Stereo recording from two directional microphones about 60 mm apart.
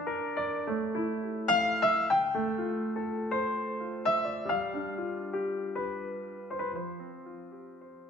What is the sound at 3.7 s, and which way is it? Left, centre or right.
Music, centre.